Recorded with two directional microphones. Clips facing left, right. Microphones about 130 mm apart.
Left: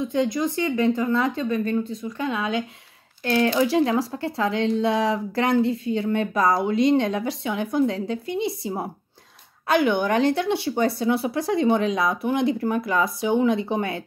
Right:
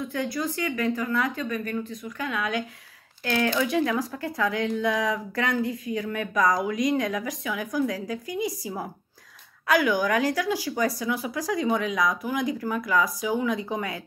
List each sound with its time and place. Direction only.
0.0 s speech: 20° left (ahead or behind)